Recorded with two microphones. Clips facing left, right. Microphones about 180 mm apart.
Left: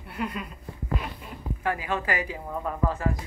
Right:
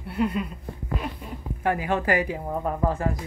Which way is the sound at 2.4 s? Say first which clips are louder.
Right 3 dB; 25° right (ahead or behind).